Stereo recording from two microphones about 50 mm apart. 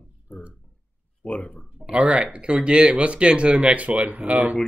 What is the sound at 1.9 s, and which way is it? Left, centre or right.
Speech, right.